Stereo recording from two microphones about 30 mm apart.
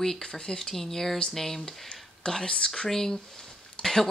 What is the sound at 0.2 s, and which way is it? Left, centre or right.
Speech, left.